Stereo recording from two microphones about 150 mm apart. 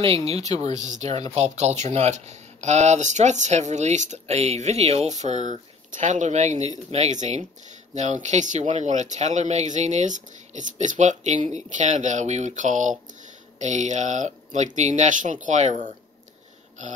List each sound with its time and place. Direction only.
0.0 s speech: 40° right (ahead or behind)